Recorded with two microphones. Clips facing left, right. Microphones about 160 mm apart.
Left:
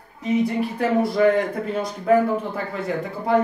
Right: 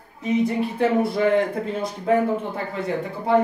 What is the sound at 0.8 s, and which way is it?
A woman's voice, 25° right (ahead or behind).